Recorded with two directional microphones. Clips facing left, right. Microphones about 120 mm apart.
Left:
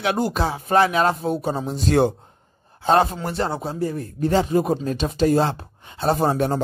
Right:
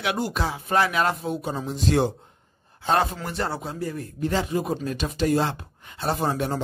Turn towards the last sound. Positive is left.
turn(degrees=35)  # may be behind; listen again after turning